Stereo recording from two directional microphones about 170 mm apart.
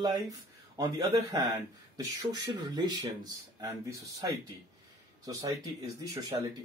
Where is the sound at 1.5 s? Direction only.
20° right (ahead or behind).